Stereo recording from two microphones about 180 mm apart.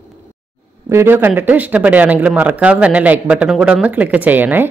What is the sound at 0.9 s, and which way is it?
Speech, 10° right (ahead or behind).